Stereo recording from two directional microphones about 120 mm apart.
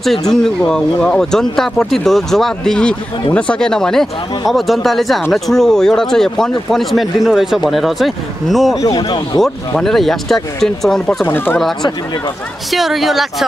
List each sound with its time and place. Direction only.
0.3 s speech: 5° left (ahead or behind)
8.8 s speech: 35° left (ahead or behind)
9.4 s speech: 5° left (ahead or behind)
11.2 s speech: 20° left (ahead or behind)
11.5 s speech: 5° left (ahead or behind)